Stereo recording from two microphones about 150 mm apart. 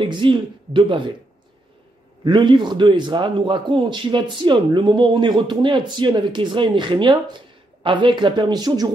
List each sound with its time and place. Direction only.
0.0 s a man's voice: 35° right (ahead or behind)
2.2 s a man's voice: 30° right (ahead or behind)